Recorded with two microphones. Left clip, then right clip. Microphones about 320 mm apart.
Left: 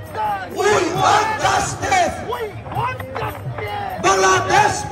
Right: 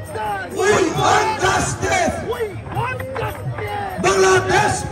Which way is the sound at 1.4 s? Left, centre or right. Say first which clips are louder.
Even; centre.